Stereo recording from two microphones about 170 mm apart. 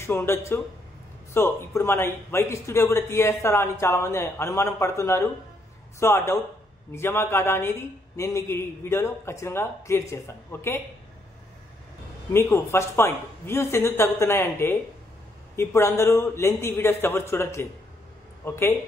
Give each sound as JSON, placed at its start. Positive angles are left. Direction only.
{"t": 0.0, "sound": "a man's voice", "side_deg": 15}
{"t": 12.3, "sound": "a man's voice", "side_deg": 15}